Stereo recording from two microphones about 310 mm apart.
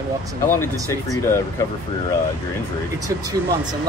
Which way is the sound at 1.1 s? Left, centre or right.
Centre.